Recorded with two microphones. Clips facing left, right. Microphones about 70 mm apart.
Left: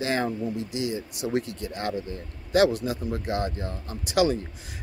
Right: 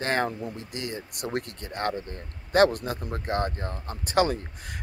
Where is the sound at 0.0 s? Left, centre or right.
Right.